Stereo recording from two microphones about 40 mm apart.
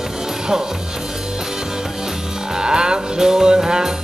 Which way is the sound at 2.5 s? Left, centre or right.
Centre.